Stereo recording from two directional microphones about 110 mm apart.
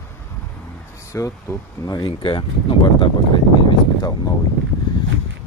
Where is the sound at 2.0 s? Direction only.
50° left (ahead or behind).